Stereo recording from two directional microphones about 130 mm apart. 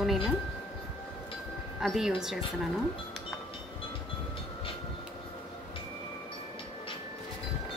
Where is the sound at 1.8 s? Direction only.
Centre (ahead or behind).